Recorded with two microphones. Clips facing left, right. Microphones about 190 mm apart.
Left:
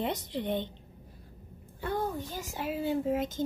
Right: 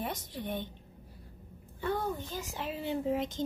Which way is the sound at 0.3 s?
20° left (ahead or behind).